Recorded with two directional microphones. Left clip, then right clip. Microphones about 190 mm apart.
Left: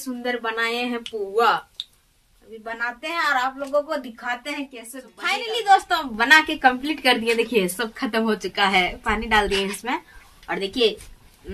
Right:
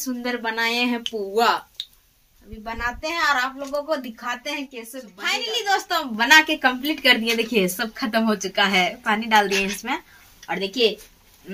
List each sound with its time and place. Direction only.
0.0 s speech: 30° right (ahead or behind)
2.6 s speech: 10° right (ahead or behind)
5.2 s a woman's voice: 5° left (ahead or behind)